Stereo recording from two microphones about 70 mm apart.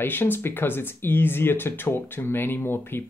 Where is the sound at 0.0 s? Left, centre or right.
Left.